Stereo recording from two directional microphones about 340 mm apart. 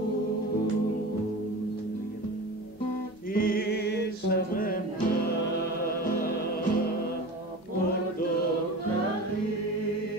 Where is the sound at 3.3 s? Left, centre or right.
Left.